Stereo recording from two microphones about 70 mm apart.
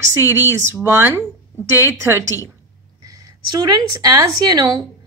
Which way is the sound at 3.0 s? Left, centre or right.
Right.